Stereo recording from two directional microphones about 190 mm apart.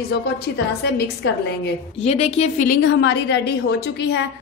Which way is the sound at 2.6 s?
65° left (ahead or behind).